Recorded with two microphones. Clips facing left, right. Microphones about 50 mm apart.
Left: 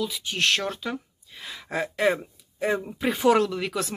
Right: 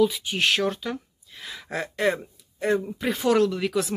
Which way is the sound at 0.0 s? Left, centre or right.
Centre.